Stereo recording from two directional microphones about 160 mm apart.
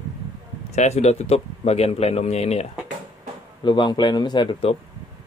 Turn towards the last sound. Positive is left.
turn(degrees=30)  # may be behind; listen again after turning